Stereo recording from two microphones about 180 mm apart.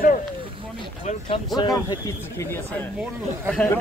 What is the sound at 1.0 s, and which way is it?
Speech, 30° left (ahead or behind).